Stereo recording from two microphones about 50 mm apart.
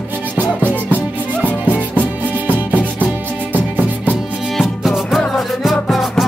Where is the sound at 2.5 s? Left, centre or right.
Right.